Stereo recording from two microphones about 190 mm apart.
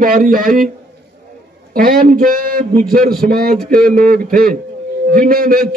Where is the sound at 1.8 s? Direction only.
50° right (ahead or behind).